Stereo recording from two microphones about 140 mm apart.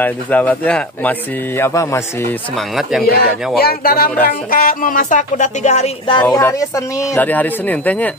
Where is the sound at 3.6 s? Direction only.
90° left; by 5.9 s 55° left (ahead or behind).